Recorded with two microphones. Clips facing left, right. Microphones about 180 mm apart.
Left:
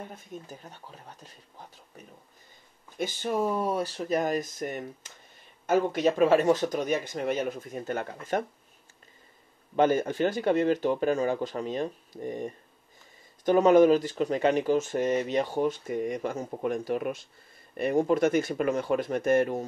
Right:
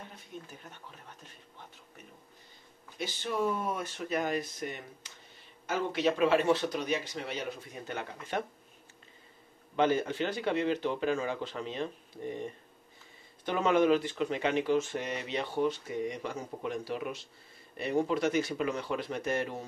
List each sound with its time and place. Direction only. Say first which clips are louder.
0.3 s speech: left 4 dB; 45° left (ahead or behind)
3.0 s speech: left 4 dB; 50° left (ahead or behind)
9.8 s speech: left 4 dB; 45° left (ahead or behind)